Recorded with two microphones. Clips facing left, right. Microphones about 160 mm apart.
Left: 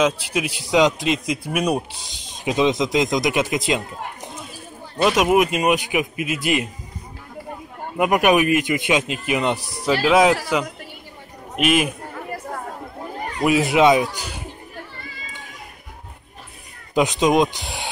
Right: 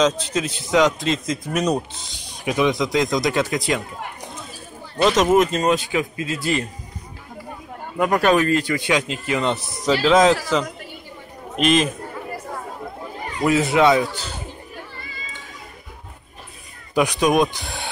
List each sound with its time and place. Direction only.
0.0 s a man's voice: 10° left (ahead or behind)
5.0 s a man's voice: 10° left (ahead or behind)
8.0 s a man's voice: 15° left (ahead or behind)
11.5 s a man's voice: 10° left (ahead or behind)
13.4 s a man's voice: 15° left (ahead or behind)
16.9 s a man's voice: 20° left (ahead or behind)